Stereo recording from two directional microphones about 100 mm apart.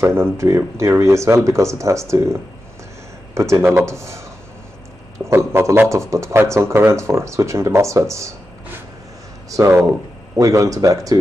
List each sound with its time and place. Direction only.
0.0 s speech: 25° right (ahead or behind)
9.5 s speech: 30° right (ahead or behind)